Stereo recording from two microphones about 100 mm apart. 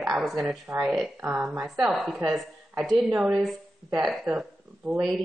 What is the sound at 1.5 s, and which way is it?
Speech, 10° right (ahead or behind).